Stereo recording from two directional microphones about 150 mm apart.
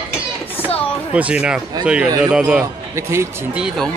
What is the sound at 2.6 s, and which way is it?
Speech, 20° right (ahead or behind).